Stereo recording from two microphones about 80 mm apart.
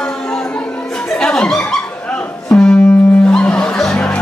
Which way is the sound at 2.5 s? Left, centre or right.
Centre.